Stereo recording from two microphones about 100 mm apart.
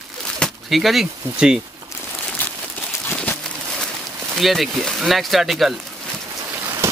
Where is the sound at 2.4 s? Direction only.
15° left (ahead or behind).